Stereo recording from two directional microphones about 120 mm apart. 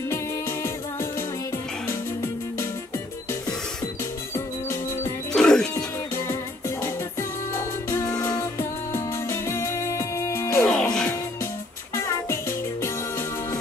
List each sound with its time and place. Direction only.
5.3 s music: 5° left (ahead or behind)
6.8 s music: 20° left (ahead or behind)
11.9 s music: 20° left (ahead or behind)